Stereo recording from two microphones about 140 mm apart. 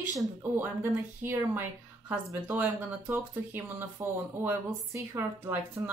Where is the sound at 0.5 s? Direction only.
15° right (ahead or behind).